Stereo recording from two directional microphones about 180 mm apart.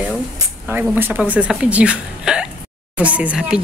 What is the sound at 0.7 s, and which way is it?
Speech, 10° right (ahead or behind).